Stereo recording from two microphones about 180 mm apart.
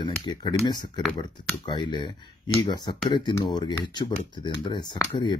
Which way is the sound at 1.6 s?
25° left (ahead or behind).